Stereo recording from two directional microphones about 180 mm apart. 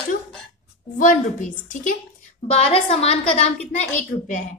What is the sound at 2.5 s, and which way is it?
A woman's voice, 35° left (ahead or behind).